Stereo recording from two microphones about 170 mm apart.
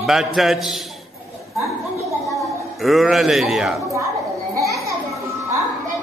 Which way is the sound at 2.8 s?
Centre (ahead or behind).